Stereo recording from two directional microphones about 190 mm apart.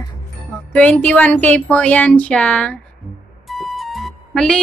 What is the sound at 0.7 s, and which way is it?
A woman's voice, 5° left (ahead or behind).